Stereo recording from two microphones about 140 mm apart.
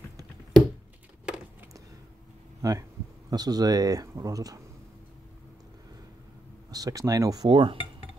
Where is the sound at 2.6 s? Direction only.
25° right (ahead or behind).